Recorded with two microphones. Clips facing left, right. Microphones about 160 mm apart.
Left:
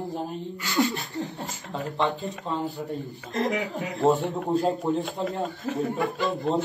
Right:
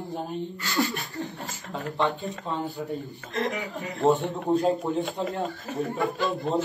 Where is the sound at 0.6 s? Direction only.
20° left (ahead or behind).